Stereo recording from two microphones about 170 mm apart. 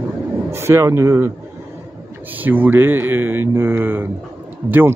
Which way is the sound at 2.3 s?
10° right (ahead or behind).